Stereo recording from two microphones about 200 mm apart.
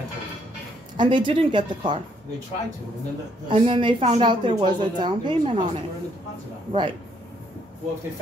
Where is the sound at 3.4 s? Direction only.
25° right (ahead or behind).